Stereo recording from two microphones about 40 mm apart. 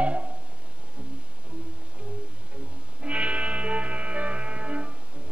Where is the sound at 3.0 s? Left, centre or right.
Right.